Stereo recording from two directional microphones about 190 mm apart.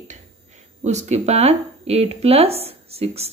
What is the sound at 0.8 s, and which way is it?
Speech, 35° right (ahead or behind).